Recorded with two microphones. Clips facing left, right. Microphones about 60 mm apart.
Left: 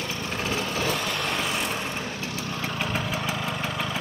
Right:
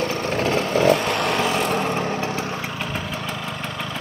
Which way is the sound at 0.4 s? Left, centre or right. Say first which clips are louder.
Right 9 dB; right.